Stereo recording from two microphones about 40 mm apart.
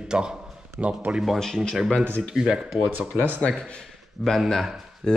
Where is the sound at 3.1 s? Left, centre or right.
Right.